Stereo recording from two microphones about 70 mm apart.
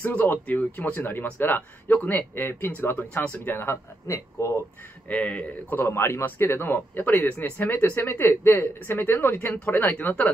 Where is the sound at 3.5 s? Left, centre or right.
Left.